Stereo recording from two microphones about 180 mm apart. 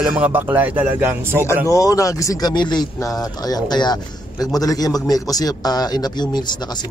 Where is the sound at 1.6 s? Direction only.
20° left (ahead or behind).